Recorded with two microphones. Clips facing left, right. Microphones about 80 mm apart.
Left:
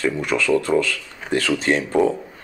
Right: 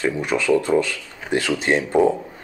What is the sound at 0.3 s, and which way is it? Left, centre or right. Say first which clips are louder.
Speech: left 1 dB; centre.